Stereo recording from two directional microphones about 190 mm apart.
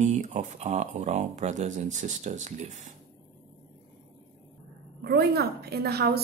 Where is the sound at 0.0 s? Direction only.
40° right (ahead or behind).